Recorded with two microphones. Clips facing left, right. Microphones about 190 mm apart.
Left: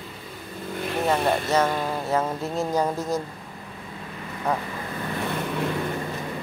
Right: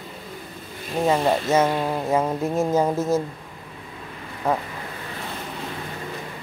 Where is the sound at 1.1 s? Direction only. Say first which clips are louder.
Right 3 dB; 20° right (ahead or behind).